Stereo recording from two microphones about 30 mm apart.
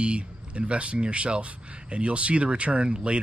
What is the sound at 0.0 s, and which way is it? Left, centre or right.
Speech, right.